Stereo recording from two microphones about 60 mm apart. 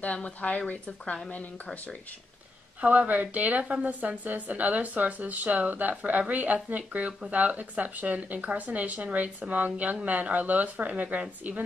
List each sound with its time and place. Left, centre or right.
0.0 s a woman's voice: left
2.8 s a woman's voice: right